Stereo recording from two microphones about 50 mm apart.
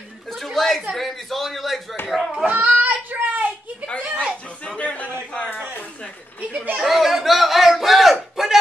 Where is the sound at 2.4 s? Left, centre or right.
Right.